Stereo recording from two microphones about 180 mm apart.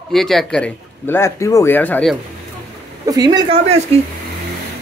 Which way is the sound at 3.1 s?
20° right (ahead or behind).